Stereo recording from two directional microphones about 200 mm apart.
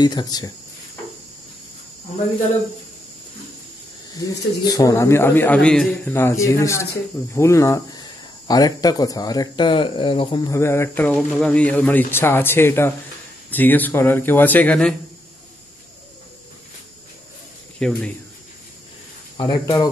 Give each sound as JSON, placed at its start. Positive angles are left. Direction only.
{"t": 0.0, "sound": "speech", "side_deg": 20}
{"t": 4.1, "sound": "speech", "side_deg": 20}
{"t": 17.7, "sound": "speech", "side_deg": 5}
{"t": 19.3, "sound": "speech", "side_deg": 25}